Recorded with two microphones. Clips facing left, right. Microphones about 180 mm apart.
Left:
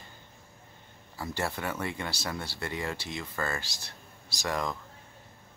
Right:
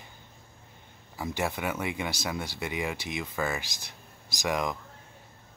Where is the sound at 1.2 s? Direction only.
15° right (ahead or behind).